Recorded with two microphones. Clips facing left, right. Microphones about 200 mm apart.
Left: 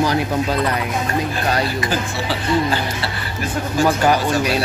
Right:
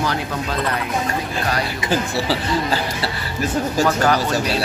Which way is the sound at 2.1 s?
35° right (ahead or behind).